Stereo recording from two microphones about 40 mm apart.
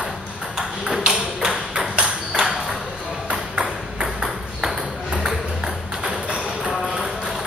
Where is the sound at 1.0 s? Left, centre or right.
Centre.